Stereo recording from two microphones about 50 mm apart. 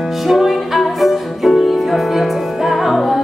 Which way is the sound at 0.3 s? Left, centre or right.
Centre.